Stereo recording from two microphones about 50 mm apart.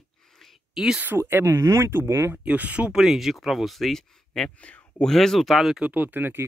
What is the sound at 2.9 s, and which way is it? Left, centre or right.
Speech, centre.